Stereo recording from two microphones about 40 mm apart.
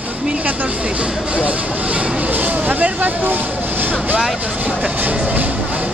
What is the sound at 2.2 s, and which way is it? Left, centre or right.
Vehicle, right.